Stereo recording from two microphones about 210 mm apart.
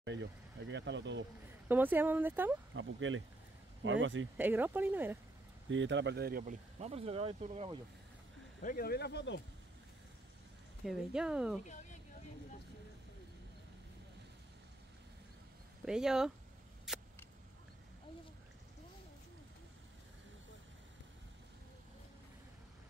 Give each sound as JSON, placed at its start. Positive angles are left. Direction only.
{"t": 0.0, "sound": "speech", "side_deg": -60}
{"t": 1.7, "sound": "speech", "side_deg": -10}
{"t": 2.7, "sound": "speech", "side_deg": -65}
{"t": 4.4, "sound": "speech", "side_deg": -10}
{"t": 5.7, "sound": "speech", "side_deg": -60}
{"t": 6.8, "sound": "speech", "side_deg": -30}
{"t": 8.6, "sound": "speech", "side_deg": 45}
{"t": 10.8, "sound": "speech", "side_deg": 0}
{"t": 11.6, "sound": "a sound", "side_deg": 35}
{"t": 15.8, "sound": "speech", "side_deg": -5}
{"t": 16.9, "sound": "a sound", "side_deg": 0}